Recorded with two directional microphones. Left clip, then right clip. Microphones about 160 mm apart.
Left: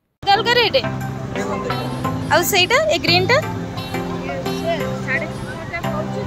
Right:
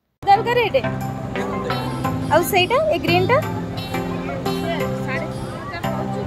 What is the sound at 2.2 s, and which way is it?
Speech, centre (ahead or behind).